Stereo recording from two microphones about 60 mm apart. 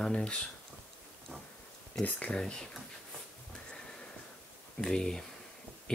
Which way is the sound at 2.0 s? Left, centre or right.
Centre.